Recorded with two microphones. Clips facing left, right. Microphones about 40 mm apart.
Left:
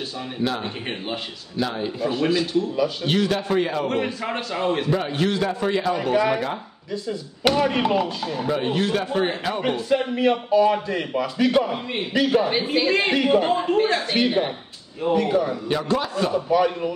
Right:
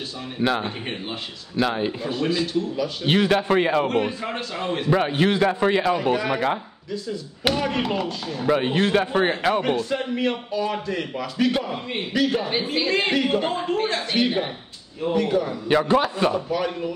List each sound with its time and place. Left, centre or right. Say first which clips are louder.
0.4 s a man's voice: right 3 dB; right
1.6 s a man's voice: right 3 dB; right
2.0 s a man's voice: left 2 dB; centre
3.1 s a man's voice: right 7 dB; right
3.8 s a man's voice: right 1 dB; centre
4.9 s a man's voice: right 3 dB; right
6.1 s a man's voice: left 2 dB; centre
8.6 s a man's voice: right 2 dB; right
9.6 s a man's voice: left 1 dB; centre
15.7 s a man's voice: right 7 dB; right
16.4 s speech: left 5 dB; centre